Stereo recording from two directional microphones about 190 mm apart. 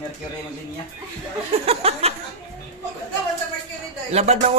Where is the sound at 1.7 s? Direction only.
30° right (ahead or behind).